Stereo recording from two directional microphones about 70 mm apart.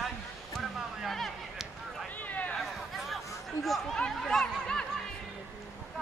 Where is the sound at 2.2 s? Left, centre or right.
Left.